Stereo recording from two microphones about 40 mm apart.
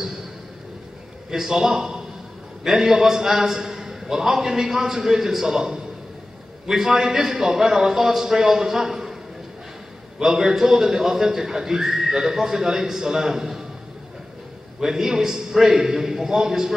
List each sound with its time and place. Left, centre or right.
1.3 s a man's voice: centre
6.9 s a man's voice: centre
10.1 s a man's voice: centre
14.8 s a man's voice: centre